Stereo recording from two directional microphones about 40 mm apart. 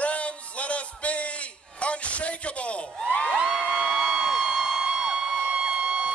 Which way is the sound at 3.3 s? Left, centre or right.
Centre.